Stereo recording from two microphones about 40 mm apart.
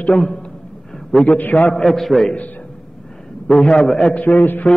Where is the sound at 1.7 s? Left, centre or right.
Centre.